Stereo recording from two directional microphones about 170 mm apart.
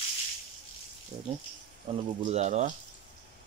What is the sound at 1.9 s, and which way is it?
Speech, 35° right (ahead or behind).